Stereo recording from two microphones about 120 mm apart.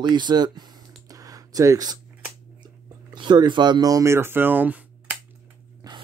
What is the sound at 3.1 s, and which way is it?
Speech, 40° right (ahead or behind).